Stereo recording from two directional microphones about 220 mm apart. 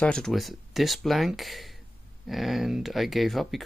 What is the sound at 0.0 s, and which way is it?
Speech, 5° left (ahead or behind).